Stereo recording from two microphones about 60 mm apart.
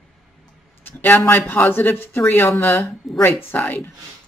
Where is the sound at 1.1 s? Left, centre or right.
Left.